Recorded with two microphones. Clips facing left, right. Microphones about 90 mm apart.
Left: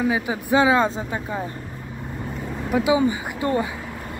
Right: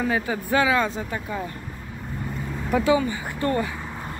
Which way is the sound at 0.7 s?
30° left (ahead or behind).